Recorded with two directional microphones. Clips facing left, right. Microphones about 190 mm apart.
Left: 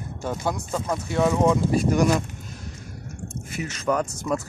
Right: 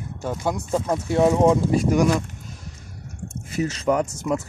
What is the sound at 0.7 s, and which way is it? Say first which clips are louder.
Speech: right 6 dB; 30° right (ahead or behind).